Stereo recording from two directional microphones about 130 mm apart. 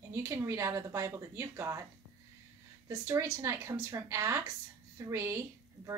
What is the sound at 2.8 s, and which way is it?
Speech, 25° right (ahead or behind).